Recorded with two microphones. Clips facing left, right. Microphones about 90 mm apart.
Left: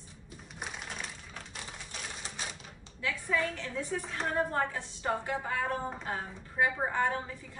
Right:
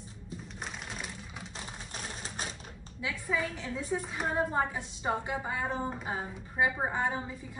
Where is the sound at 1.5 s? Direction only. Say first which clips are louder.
Right 2 dB; 40° right (ahead or behind).